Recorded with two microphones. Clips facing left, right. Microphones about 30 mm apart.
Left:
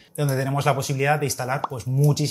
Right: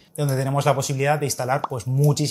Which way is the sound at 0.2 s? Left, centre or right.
Centre.